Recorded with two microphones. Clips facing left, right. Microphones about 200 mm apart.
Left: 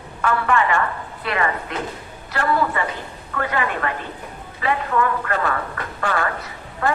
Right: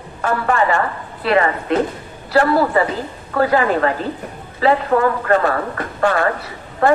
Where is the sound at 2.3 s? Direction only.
35° right (ahead or behind).